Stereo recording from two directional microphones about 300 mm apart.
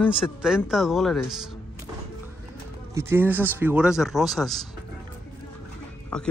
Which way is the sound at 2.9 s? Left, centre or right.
Centre.